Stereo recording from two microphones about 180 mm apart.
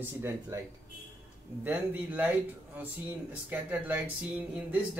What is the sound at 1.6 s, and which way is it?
Speech, 10° right (ahead or behind).